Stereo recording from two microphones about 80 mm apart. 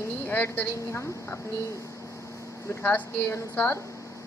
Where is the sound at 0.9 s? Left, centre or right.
Left.